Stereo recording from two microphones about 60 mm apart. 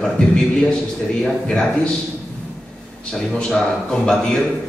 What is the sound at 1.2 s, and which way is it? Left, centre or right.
Speech, centre.